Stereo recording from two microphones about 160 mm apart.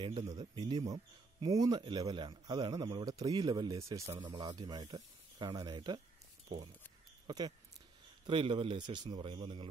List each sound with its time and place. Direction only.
0.0 s speech: 30° right (ahead or behind)
7.2 s a man's voice: 25° right (ahead or behind)